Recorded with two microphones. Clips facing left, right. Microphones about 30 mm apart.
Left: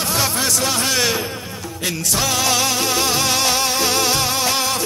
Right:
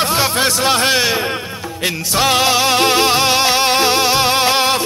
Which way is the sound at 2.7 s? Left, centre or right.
Right.